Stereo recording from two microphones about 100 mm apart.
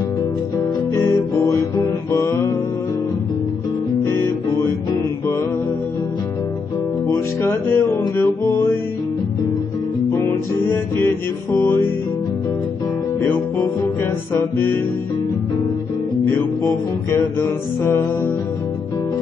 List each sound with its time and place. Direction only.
1.3 s music: 30° left (ahead or behind)
4.0 s music: 25° left (ahead or behind)
7.1 s music: 25° left (ahead or behind)
10.1 s music: 25° left (ahead or behind)
14.3 s music: 20° left (ahead or behind)
16.6 s music: 25° left (ahead or behind)